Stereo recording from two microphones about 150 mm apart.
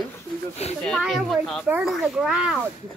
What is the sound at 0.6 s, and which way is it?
Speech, 45° left (ahead or behind).